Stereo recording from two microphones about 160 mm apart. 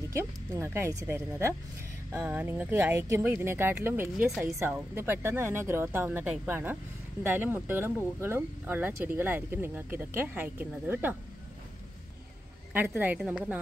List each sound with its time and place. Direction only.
0.1 s speech: 15° right (ahead or behind)
12.7 s speech: 10° right (ahead or behind)